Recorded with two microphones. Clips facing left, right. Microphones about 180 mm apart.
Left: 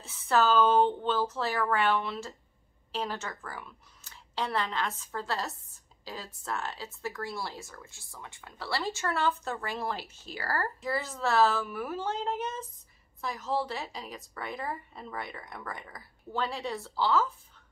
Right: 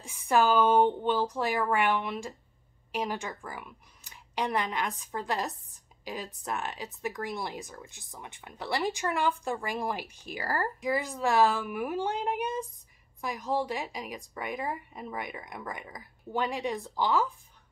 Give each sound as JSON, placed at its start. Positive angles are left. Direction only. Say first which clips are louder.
{"t": 0.0, "sound": "speech", "louder": "right 1 dB", "side_deg": -15}